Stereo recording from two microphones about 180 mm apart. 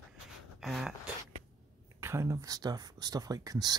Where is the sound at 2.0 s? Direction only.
15° right (ahead or behind).